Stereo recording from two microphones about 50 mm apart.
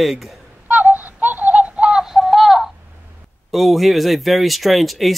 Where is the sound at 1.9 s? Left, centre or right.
Centre.